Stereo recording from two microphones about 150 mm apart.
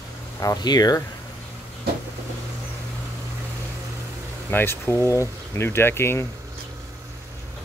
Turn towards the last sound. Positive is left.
turn(degrees=15)  # may be behind; listen again after turning